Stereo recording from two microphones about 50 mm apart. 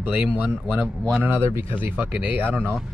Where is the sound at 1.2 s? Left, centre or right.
Right.